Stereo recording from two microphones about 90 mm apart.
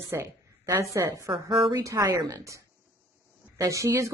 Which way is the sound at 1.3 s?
65° right (ahead or behind).